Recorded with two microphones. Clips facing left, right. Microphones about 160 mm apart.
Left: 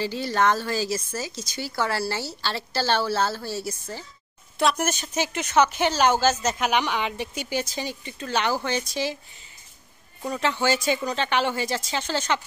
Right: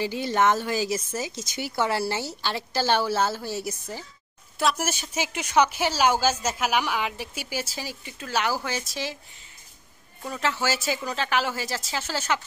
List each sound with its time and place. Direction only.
0.0 s speech: 15° right (ahead or behind)
4.6 s speech: 5° right (ahead or behind)
10.3 s speech: centre (ahead or behind)